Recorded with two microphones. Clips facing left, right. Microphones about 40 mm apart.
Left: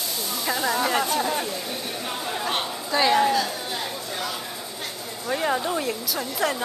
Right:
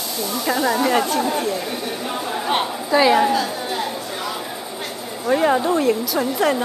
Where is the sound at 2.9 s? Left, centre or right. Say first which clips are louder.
Right 4 dB; centre.